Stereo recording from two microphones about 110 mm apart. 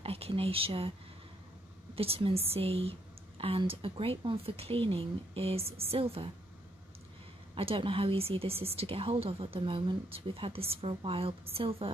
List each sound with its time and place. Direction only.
0.0 s speech: 60° right (ahead or behind)
2.0 s a woman's voice: 60° right (ahead or behind)
7.5 s a woman's voice: 55° right (ahead or behind)